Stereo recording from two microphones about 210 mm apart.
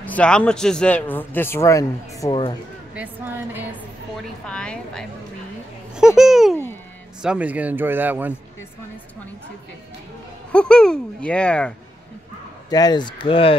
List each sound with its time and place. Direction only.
0.0 s a man's voice: 5° left (ahead or behind)
2.9 s speech: 10° right (ahead or behind)
4.5 s speech: 5° left (ahead or behind)
6.5 s speech: 10° left (ahead or behind)
7.2 s speech: 5° right (ahead or behind)
10.5 s speech: 5° left (ahead or behind)
12.6 s speech: 20° left (ahead or behind)